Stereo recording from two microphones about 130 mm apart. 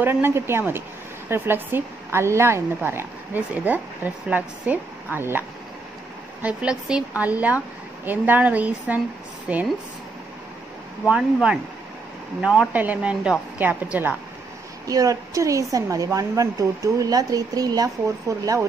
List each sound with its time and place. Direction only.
0.0 s a woman's voice: 20° right (ahead or behind)
6.4 s a woman's voice: 5° right (ahead or behind)
11.1 s a woman's voice: 5° right (ahead or behind)
14.9 s speech: 25° right (ahead or behind)